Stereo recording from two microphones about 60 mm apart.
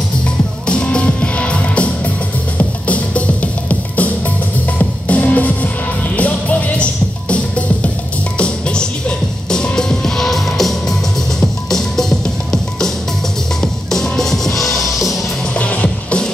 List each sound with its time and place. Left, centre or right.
0.7 s music: centre
13.6 s music: centre
15.5 s music: left